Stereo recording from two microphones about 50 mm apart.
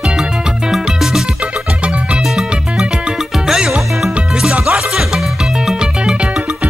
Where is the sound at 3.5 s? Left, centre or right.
Centre.